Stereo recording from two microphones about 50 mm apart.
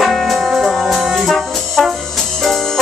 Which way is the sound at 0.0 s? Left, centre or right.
Centre.